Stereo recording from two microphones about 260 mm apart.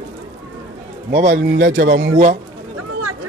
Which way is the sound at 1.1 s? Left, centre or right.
Right.